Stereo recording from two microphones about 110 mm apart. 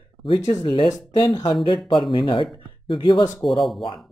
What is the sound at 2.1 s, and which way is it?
Speech, 50° left (ahead or behind).